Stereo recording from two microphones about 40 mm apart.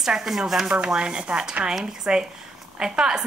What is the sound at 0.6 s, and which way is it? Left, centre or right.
Speech, right.